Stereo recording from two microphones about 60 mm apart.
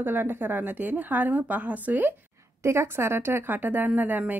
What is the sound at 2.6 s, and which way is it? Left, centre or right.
A woman's voice, right.